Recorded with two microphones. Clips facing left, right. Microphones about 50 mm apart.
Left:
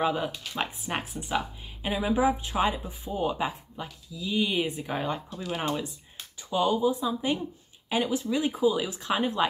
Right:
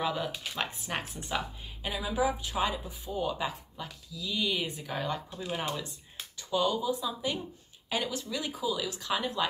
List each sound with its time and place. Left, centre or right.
0.0 s a woman's voice: left
6.5 s a woman's voice: left
6.9 s a woman's voice: left